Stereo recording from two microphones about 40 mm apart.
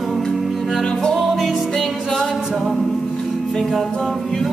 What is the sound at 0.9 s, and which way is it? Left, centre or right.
Music, centre.